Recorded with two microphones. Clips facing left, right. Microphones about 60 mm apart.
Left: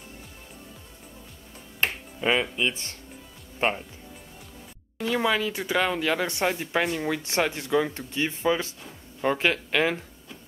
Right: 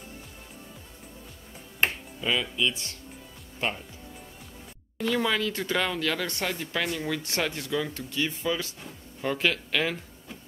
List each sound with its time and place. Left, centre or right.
2.2 s speech: left
4.9 s speech: centre